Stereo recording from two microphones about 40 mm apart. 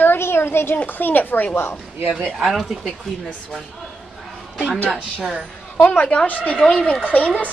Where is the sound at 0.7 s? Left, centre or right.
Left.